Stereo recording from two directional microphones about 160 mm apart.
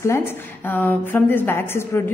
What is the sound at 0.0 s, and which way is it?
A woman's voice, 15° left (ahead or behind).